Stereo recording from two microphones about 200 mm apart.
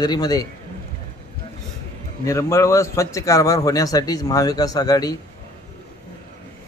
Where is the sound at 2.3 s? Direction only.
15° left (ahead or behind).